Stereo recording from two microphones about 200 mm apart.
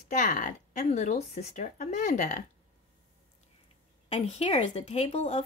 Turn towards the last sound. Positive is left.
turn(degrees=30)  # may be behind; listen again after turning